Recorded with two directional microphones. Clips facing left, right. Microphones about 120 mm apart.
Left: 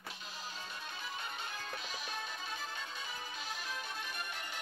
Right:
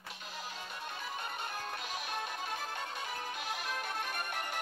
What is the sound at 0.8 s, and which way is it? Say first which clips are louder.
Music: right 4 dB; 55° right (ahead or behind).